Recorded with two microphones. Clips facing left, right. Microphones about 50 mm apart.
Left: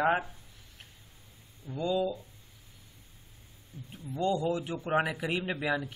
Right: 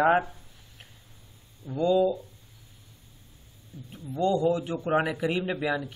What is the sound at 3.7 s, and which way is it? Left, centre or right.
Speech, left.